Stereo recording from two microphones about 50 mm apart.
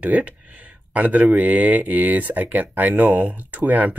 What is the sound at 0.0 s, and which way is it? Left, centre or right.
Speech, right.